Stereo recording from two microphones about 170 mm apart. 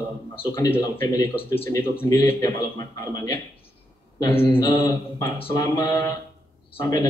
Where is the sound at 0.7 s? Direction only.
20° left (ahead or behind).